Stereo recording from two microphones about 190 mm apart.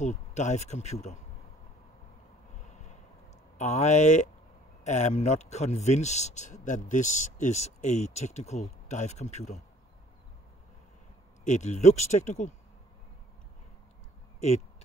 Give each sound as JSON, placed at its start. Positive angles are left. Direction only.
{"t": 0.0, "sound": "speech", "side_deg": 35}
{"t": 3.5, "sound": "speech", "side_deg": 35}
{"t": 11.4, "sound": "speech", "side_deg": 40}